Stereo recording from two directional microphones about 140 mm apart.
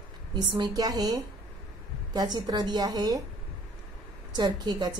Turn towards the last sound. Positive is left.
turn(degrees=-30)  # may be behind; listen again after turning